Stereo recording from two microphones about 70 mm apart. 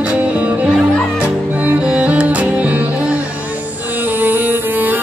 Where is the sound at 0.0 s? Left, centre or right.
Centre.